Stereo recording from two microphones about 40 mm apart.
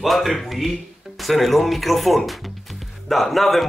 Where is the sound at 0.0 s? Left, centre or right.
Centre.